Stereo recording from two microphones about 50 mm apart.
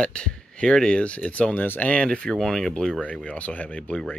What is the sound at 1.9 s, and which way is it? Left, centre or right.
Speech, left.